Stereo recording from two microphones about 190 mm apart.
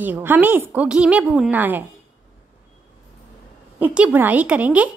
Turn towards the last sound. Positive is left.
turn(degrees=-5)  # may be behind; listen again after turning